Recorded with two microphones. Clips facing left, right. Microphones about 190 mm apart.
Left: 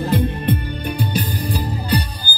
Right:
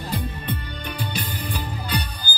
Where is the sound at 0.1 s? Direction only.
65° left (ahead or behind).